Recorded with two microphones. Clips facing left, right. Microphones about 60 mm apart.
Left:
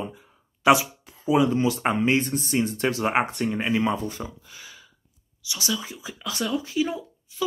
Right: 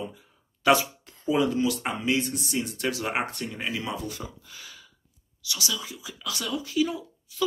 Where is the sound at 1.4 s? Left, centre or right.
Left.